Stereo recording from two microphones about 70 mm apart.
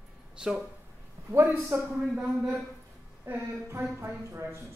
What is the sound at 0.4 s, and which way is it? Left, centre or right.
Speech, centre.